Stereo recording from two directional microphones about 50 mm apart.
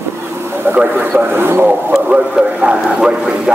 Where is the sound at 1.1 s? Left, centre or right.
Right.